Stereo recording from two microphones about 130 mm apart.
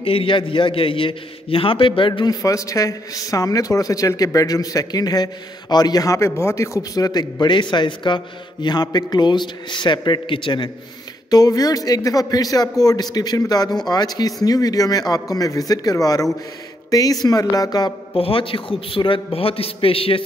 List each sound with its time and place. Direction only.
0.0 s a man's voice: 45° left (ahead or behind)
2.4 s a man's voice: 25° left (ahead or behind)
11.2 s a man's voice: 30° left (ahead or behind)
18.1 s a man's voice: 45° left (ahead or behind)